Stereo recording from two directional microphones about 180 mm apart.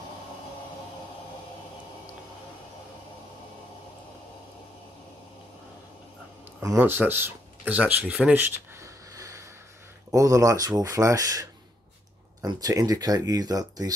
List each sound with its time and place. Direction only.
6.6 s speech: 15° right (ahead or behind)
9.1 s a sound: 20° right (ahead or behind)
10.1 s speech: 15° right (ahead or behind)